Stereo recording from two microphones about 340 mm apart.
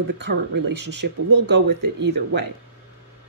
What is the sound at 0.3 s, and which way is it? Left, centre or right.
Speech, right.